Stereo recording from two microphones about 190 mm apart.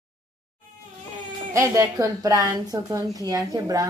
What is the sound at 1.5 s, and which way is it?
Speech, 15° right (ahead or behind).